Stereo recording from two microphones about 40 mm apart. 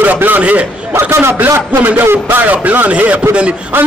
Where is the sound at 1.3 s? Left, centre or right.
Right.